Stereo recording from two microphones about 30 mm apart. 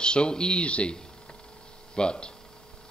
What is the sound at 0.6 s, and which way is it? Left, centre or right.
Speech, left.